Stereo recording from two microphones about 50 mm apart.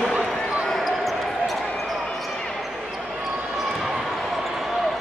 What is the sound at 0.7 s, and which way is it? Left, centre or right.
Basketball bounce, centre.